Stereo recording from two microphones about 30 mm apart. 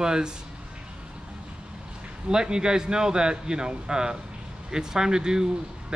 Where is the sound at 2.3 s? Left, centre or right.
Right.